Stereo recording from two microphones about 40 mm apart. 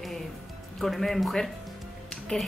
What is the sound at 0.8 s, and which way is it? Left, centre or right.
Speech, centre.